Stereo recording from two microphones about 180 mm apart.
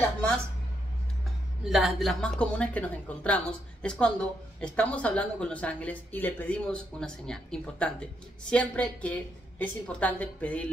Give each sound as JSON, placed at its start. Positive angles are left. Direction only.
{"t": 1.6, "sound": "a woman's voice", "side_deg": 0}